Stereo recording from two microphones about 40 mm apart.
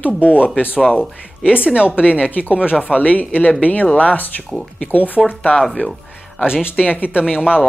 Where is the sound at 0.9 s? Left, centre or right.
Right.